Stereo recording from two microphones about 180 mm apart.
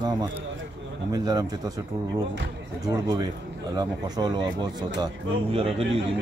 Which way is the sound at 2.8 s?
20° right (ahead or behind).